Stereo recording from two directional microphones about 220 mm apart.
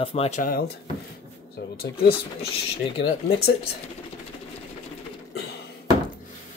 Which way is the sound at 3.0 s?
50° left (ahead or behind).